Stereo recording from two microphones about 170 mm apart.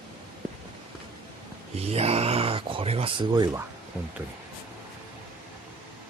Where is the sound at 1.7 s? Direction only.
35° right (ahead or behind).